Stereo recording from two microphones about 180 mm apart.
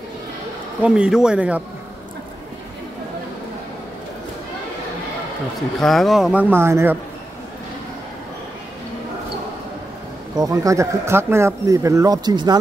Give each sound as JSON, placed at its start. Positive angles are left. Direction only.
{"t": 0.8, "sound": "a man's voice", "side_deg": -5}
{"t": 5.8, "sound": "speech", "side_deg": 0}
{"t": 10.3, "sound": "speech", "side_deg": -20}